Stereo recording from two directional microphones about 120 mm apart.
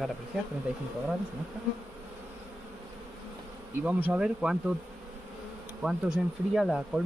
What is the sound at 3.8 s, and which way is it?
Bee, 15° right (ahead or behind).